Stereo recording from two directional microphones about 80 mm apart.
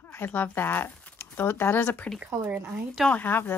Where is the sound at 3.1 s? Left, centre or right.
Left.